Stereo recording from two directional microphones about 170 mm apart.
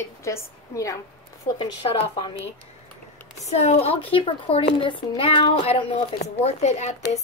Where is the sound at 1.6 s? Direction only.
35° left (ahead or behind).